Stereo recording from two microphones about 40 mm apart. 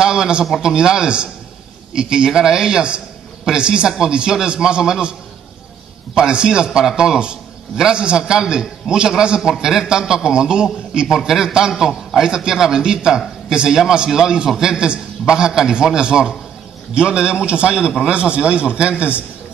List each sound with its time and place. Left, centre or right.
0.0 s a man's voice: centre
6.1 s a man's voice: right